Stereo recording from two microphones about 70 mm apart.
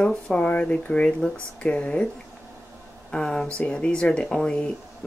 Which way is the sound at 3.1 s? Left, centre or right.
Centre.